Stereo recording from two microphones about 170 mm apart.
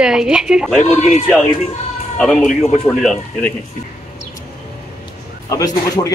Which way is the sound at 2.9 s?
5° left (ahead or behind).